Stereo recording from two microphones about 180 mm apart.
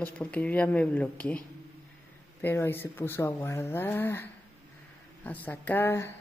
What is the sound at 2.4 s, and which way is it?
Speech, 10° left (ahead or behind).